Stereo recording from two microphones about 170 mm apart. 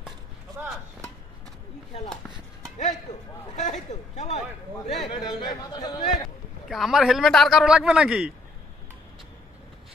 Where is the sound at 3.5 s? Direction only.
45° left (ahead or behind).